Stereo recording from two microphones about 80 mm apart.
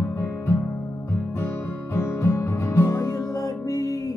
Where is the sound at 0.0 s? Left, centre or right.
Left.